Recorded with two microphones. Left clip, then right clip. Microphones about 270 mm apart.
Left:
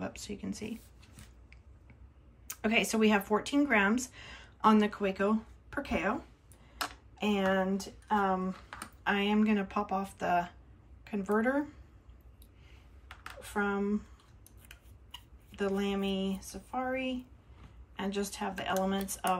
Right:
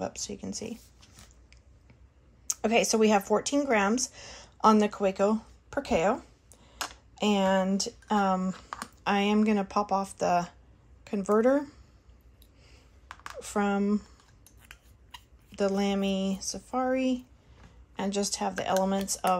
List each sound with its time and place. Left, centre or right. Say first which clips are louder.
0.0 s speech: right 5 dB; centre
2.4 s speech: right 5 dB; centre
7.7 s speech: right 3 dB; right
13.1 s speech: right 5 dB; right
15.5 s speech: right 5 dB; centre